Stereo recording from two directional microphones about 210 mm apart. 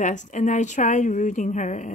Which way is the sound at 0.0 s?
35° left (ahead or behind).